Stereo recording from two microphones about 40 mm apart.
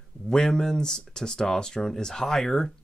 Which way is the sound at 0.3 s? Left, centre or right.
Centre.